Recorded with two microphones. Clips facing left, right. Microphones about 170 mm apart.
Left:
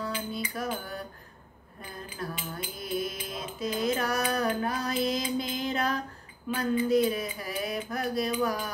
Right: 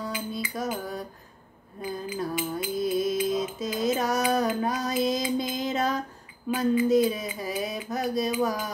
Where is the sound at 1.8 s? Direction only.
20° right (ahead or behind).